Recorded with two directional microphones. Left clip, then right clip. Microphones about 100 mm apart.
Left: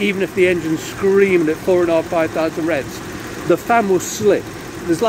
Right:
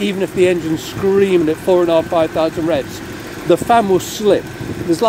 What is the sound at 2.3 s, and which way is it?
Speech, 30° right (ahead or behind).